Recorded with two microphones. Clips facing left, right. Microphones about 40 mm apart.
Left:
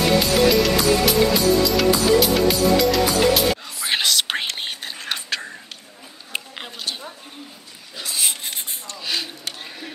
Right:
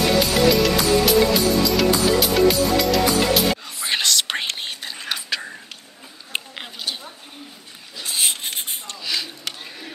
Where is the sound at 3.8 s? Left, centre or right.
Centre.